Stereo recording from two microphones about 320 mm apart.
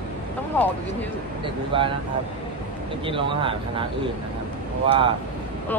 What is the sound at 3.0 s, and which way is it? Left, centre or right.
Speech, centre.